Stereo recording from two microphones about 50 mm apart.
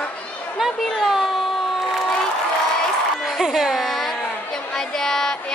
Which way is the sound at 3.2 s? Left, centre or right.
Centre.